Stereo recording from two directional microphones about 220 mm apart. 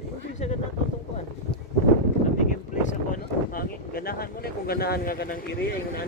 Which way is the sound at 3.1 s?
40° left (ahead or behind).